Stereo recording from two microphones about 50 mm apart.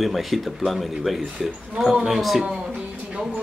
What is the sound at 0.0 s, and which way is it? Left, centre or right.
Speech, centre.